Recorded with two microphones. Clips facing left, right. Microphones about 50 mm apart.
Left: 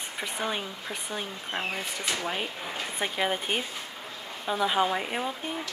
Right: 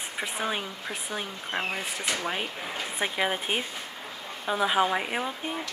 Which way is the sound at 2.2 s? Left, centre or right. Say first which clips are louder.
Right 1 dB; centre.